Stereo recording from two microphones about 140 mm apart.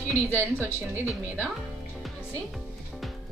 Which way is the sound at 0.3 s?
15° right (ahead or behind).